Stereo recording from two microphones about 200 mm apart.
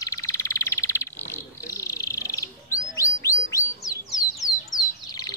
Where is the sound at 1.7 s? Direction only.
15° left (ahead or behind).